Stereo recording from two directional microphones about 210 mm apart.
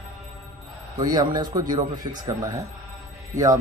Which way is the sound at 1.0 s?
20° right (ahead or behind).